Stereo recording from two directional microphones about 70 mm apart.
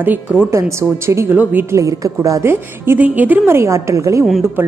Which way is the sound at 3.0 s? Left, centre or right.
Right.